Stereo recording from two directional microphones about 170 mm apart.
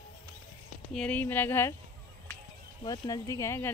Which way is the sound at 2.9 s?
20° left (ahead or behind).